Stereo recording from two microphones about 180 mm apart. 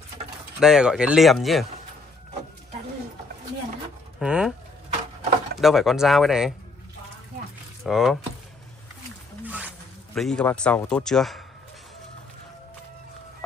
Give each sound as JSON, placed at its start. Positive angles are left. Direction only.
{"t": 0.6, "sound": "a man's voice", "side_deg": -5}
{"t": 4.2, "sound": "a man's voice", "side_deg": -5}
{"t": 5.6, "sound": "a man's voice", "side_deg": 0}
{"t": 7.8, "sound": "a man's voice", "side_deg": 0}
{"t": 9.4, "sound": "a sound", "side_deg": -10}
{"t": 10.1, "sound": "a man's voice", "side_deg": 5}